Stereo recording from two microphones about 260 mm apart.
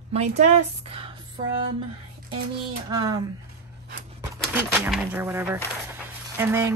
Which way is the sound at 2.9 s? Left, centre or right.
Centre.